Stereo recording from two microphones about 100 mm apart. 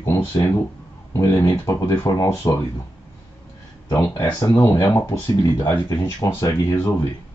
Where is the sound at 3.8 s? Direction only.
35° left (ahead or behind).